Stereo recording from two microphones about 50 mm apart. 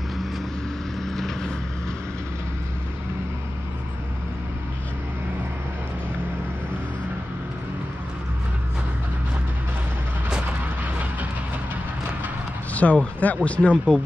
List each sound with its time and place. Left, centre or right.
1.0 s vehicle: centre
12.7 s speech: left